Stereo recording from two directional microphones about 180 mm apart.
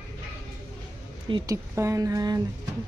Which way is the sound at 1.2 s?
25° right (ahead or behind).